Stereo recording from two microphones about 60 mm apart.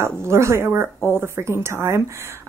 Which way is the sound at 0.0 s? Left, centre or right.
Right.